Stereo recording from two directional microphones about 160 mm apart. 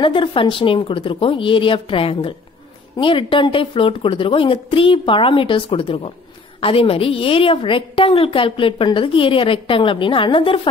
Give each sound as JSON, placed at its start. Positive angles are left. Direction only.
{"t": 0.0, "sound": "a woman's voice", "side_deg": 30}